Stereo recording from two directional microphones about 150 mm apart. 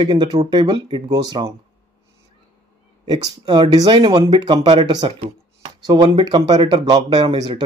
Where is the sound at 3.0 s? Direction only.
25° right (ahead or behind).